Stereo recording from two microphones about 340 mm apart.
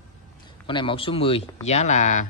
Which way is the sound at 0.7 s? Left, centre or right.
Centre.